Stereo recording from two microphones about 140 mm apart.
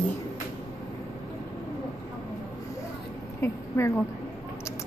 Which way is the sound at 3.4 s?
20° left (ahead or behind).